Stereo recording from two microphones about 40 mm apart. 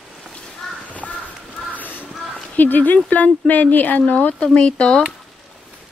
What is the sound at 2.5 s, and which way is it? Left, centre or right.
Speech, left.